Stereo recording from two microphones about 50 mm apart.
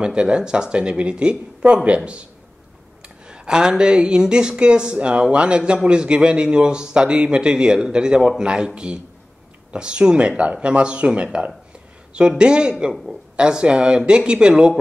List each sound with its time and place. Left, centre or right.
0.0 s a man's voice: centre
3.3 s a woman's voice: centre
12.9 s a woman's voice: centre
13.4 s a man's voice: centre